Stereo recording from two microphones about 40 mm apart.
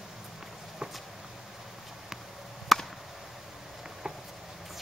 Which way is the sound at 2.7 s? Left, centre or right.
Centre.